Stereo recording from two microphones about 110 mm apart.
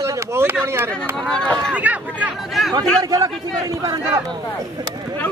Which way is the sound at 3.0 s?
30° right (ahead or behind).